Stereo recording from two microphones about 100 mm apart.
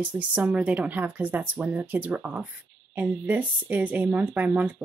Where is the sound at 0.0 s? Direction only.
15° right (ahead or behind).